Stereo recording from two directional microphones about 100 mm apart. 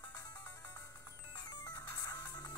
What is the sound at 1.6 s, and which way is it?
Music, 40° left (ahead or behind).